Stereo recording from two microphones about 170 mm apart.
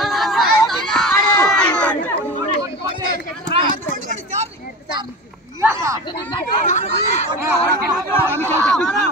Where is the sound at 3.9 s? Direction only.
45° right (ahead or behind).